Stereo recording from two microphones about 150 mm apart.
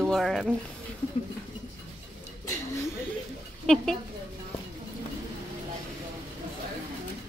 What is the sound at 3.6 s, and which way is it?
Speech, 5° left (ahead or behind).